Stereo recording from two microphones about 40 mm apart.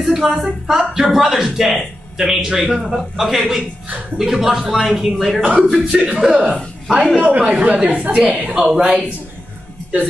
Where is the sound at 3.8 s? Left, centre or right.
Right.